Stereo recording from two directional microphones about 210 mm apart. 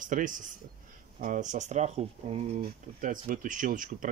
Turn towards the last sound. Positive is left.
turn(degrees=-40)  # may be behind; listen again after turning